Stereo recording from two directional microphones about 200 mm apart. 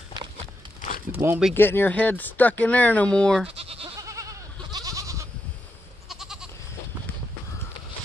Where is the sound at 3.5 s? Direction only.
30° right (ahead or behind).